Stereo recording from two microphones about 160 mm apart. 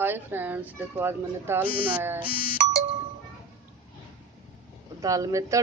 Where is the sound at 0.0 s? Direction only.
10° right (ahead or behind).